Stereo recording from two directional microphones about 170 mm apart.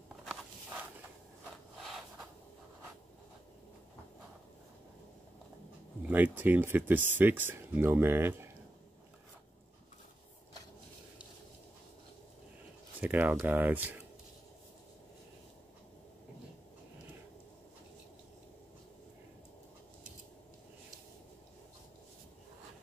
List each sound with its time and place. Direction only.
6.0 s speech: 10° right (ahead or behind)
13.0 s speech: 10° right (ahead or behind)